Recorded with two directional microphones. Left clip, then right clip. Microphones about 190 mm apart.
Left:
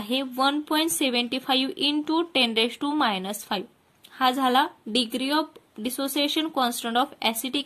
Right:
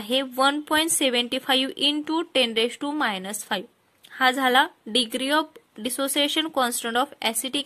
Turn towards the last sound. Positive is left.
turn(degrees=-40)  # may be behind; listen again after turning